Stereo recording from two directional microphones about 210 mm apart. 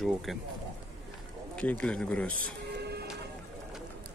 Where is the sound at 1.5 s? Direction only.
5° left (ahead or behind).